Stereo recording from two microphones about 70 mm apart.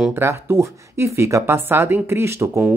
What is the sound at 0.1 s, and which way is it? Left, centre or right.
Speech, right.